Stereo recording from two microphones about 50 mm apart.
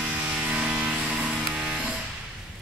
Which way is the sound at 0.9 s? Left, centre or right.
Right.